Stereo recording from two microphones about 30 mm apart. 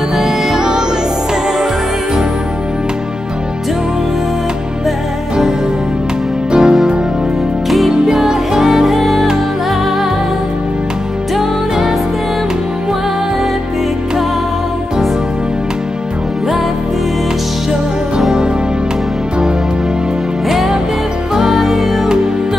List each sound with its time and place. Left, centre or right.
0.2 s music: centre
6.6 s music: centre
8.1 s music: centre
8.8 s music: centre
20.5 s music: centre